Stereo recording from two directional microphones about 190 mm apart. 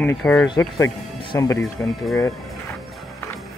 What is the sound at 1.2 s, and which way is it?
Music, 20° left (ahead or behind).